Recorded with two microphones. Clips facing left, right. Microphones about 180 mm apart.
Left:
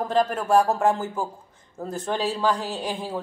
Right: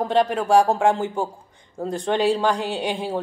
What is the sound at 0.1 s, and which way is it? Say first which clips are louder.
Speech: right 2 dB; centre (ahead or behind).